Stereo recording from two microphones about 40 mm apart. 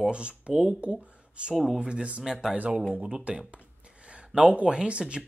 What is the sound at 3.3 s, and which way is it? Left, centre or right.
Speech, right.